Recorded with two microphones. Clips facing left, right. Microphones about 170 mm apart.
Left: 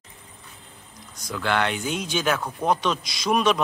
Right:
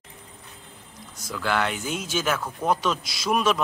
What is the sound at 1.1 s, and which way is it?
A man's voice, 5° right (ahead or behind).